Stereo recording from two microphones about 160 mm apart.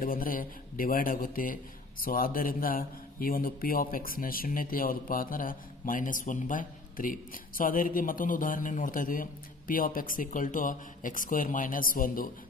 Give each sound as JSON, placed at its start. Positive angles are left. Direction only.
{"t": 0.0, "sound": "speech", "side_deg": 60}